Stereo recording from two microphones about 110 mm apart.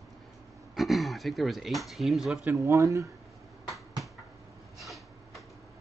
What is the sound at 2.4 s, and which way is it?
Speech, 20° right (ahead or behind).